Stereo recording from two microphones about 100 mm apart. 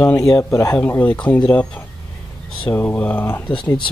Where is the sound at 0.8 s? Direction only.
20° left (ahead or behind).